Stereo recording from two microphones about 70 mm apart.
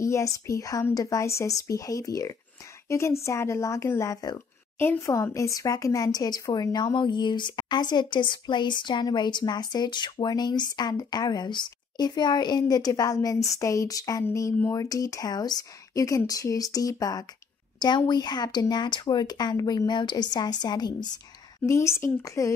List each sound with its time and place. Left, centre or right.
0.0 s speech: left
2.9 s speech: left
6.1 s a woman's voice: left
17.7 s a woman's voice: left
21.6 s speech: left